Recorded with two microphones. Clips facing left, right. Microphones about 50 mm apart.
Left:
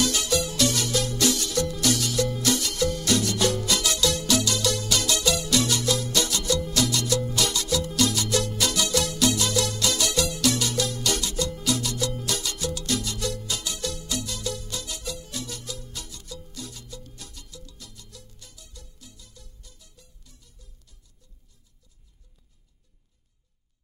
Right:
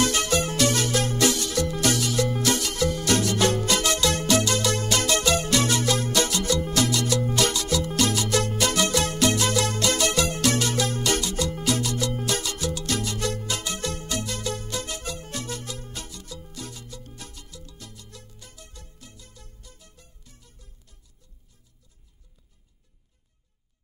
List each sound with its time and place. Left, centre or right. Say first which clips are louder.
0.0 s music: right 2 dB; right
17.8 s music: right 3 dB; right